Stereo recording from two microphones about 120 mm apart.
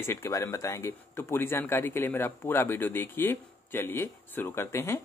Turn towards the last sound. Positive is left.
turn(degrees=20)  # may be behind; listen again after turning